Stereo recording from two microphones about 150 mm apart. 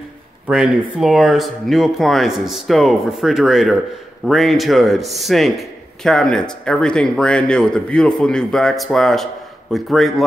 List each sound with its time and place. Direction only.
0.5 s speech: 5° right (ahead or behind)